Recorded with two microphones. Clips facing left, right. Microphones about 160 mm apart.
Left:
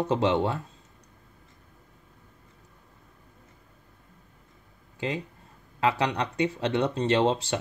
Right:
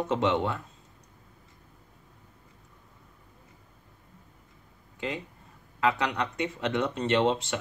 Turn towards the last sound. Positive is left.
turn(degrees=30)  # may be behind; listen again after turning